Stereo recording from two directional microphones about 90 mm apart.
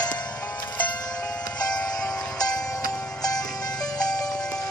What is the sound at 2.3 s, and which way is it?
Music, 45° left (ahead or behind).